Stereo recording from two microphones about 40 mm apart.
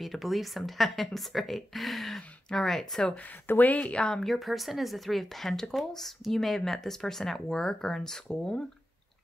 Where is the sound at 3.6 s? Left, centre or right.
Left.